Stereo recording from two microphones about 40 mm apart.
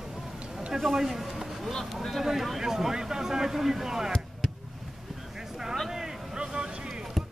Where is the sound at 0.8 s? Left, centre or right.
Centre.